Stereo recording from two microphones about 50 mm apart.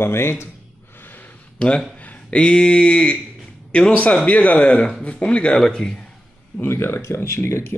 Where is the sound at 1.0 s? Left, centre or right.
Left.